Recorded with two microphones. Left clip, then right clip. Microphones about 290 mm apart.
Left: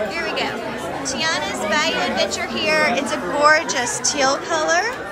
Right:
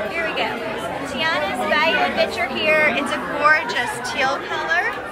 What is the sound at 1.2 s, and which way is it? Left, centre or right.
A woman's voice, centre.